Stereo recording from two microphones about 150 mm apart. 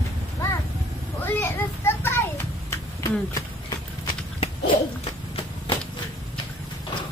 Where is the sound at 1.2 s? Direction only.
15° left (ahead or behind).